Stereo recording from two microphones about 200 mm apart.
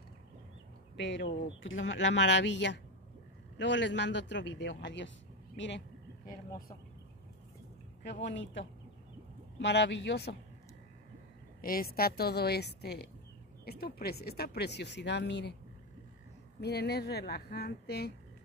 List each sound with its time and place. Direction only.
0.9 s speech: 65° left (ahead or behind)
8.0 s speech: 65° left (ahead or behind)
11.6 s speech: 45° left (ahead or behind)
16.6 s speech: 55° left (ahead or behind)